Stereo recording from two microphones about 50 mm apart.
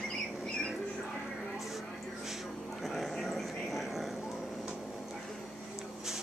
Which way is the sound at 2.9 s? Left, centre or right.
Centre.